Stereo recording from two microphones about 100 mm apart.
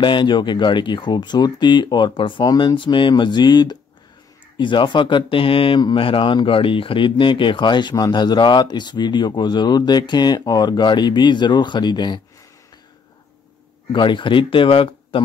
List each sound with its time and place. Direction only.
0.0 s speech: 50° left (ahead or behind)
2.4 s speech: 45° left (ahead or behind)
13.9 s speech: 55° left (ahead or behind)